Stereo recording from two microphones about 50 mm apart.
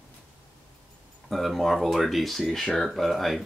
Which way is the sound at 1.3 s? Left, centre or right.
Centre.